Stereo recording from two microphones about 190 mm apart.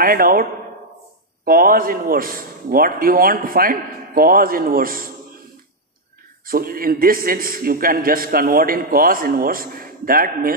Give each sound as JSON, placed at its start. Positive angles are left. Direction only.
{"t": 0.0, "sound": "a man's voice", "side_deg": -50}
{"t": 6.4, "sound": "a man's voice", "side_deg": -50}